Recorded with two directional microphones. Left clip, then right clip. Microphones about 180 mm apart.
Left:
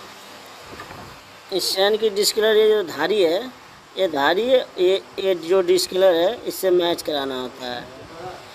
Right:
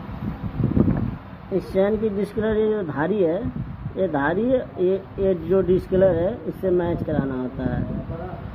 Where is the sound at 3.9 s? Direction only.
45° left (ahead or behind).